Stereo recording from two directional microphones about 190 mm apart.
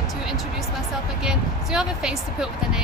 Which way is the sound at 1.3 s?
5° right (ahead or behind).